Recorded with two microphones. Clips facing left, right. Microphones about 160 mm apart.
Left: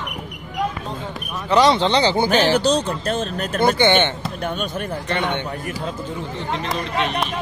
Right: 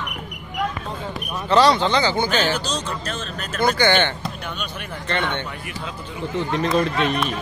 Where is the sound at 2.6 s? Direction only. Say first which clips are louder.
Left 8 dB; 60° left (ahead or behind).